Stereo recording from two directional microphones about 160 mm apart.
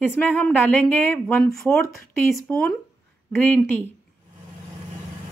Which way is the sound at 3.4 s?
10° left (ahead or behind).